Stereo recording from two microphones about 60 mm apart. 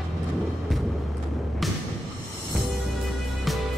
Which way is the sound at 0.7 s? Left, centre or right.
Centre.